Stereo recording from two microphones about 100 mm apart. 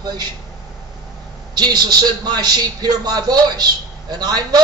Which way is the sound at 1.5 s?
45° right (ahead or behind).